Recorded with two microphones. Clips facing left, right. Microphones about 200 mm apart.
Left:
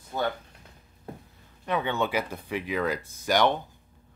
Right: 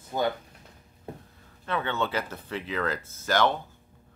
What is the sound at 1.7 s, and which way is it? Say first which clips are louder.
Speech: left 2 dB; 15° left (ahead or behind).